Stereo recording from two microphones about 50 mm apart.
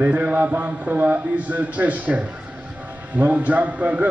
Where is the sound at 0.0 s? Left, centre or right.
Right.